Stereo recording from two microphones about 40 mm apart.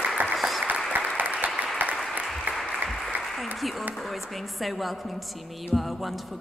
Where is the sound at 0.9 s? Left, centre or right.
Right.